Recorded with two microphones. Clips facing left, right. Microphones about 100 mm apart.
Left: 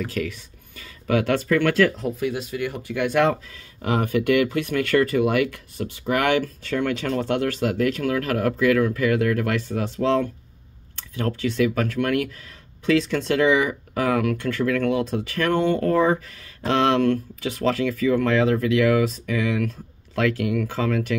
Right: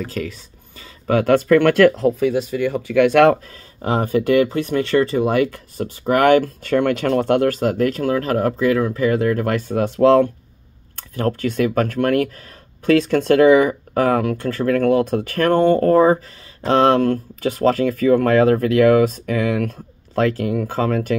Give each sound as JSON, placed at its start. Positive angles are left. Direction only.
{"t": 0.0, "sound": "speech", "side_deg": -35}
{"t": 3.0, "sound": "speech", "side_deg": -75}
{"t": 3.4, "sound": "speech", "side_deg": -35}